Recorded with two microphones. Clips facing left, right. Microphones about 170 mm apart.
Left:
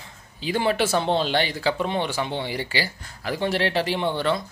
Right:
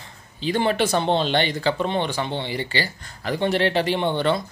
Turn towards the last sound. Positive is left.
turn(degrees=0)  # may be behind; listen again after turning